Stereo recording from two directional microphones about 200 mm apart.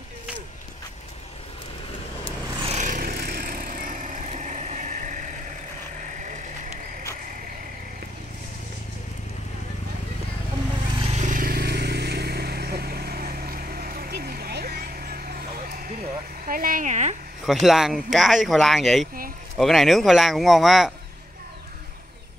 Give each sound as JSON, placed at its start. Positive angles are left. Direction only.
{"t": 2.6, "sound": "vehicle", "side_deg": -35}
{"t": 11.0, "sound": "vehicle", "side_deg": -30}
{"t": 16.4, "sound": "speech", "side_deg": -45}
{"t": 17.5, "sound": "speech", "side_deg": 0}